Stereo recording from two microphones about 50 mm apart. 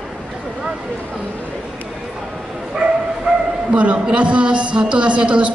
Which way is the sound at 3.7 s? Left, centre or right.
Right.